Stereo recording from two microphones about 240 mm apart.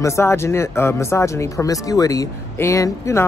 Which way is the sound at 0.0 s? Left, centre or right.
Centre.